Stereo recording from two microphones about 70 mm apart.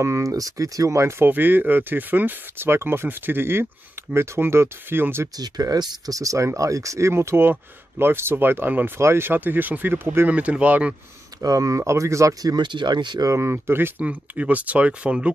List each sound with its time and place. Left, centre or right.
0.0 s speech: right
1.2 s speech: right
5.4 s speech: right
6.1 s speech: right
10.3 s speech: right
11.4 s speech: right
12.4 s speech: right
13.3 s speech: right
14.0 s speech: centre